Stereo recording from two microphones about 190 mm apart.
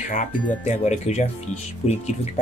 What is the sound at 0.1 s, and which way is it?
Speech, 40° left (ahead or behind).